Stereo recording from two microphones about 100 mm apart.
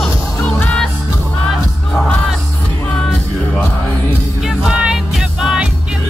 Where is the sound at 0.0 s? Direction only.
5° left (ahead or behind).